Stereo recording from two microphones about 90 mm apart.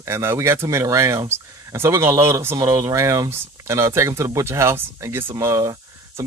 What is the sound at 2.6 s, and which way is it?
Speech, 40° right (ahead or behind).